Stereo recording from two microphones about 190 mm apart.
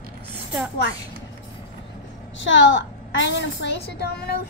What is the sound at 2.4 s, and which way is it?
A woman's voice, 75° left (ahead or behind).